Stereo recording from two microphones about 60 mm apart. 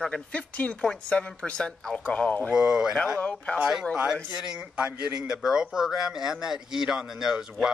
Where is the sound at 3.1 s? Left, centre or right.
Left.